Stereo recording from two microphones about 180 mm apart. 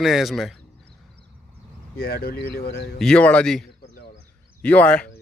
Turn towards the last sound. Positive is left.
turn(degrees=5)  # may be behind; listen again after turning